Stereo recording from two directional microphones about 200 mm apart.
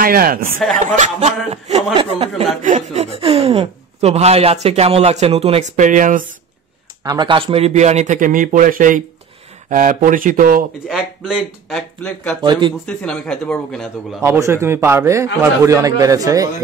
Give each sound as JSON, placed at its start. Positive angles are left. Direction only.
{"t": 0.0, "sound": "speech", "side_deg": -45}
{"t": 7.0, "sound": "speech", "side_deg": -20}
{"t": 10.9, "sound": "speech", "side_deg": 0}
{"t": 12.4, "sound": "speech", "side_deg": -25}
{"t": 12.8, "sound": "speech", "side_deg": 5}
{"t": 14.2, "sound": "a man's voice", "side_deg": -15}